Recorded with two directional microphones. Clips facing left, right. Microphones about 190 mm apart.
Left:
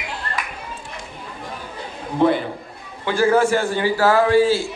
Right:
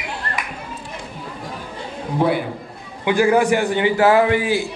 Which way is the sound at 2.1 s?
10° right (ahead or behind).